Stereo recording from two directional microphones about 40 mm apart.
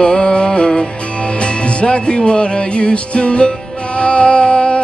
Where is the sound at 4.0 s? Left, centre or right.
Left.